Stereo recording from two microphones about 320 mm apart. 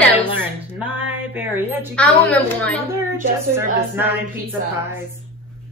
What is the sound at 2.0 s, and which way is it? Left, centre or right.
Speech, centre.